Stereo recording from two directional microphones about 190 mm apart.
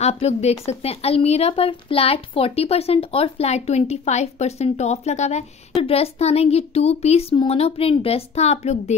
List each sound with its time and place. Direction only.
0.0 s a woman's voice: 35° left (ahead or behind)